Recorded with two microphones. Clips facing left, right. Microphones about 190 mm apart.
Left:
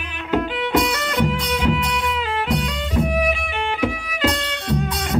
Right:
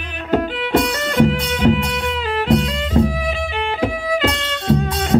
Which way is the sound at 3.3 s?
30° right (ahead or behind).